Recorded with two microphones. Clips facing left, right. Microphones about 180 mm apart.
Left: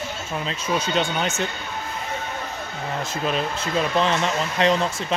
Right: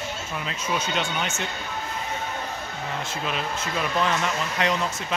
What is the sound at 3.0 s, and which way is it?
Speech, 40° left (ahead or behind).